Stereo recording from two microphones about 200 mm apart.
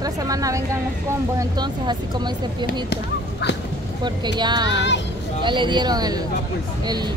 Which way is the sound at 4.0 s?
20° right (ahead or behind).